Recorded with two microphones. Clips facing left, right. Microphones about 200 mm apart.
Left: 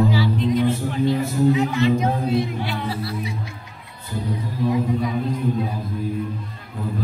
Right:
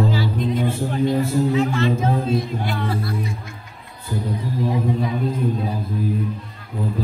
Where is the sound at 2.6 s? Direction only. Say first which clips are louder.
Right 2 dB; 50° right (ahead or behind).